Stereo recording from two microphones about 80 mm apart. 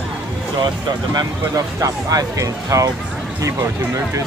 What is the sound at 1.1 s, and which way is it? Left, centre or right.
Speech, right.